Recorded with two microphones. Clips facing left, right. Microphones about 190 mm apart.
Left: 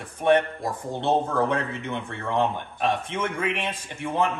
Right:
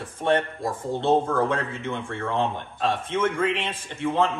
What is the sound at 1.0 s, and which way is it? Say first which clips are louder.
A man's voice: right 1 dB; 20° left (ahead or behind).